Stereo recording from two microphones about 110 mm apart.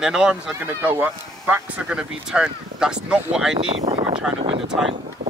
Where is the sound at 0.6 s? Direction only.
20° right (ahead or behind).